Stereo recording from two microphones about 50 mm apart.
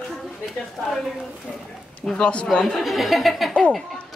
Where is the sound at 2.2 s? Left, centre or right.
Left.